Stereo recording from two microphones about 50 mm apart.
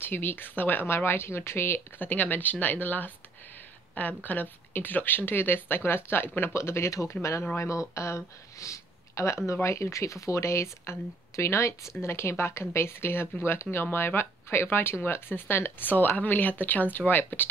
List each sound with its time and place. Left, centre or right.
0.0 s speech: left
2.0 s speech: left
3.9 s speech: left
4.2 s speech: left
6.5 s speech: left
12.0 s speech: left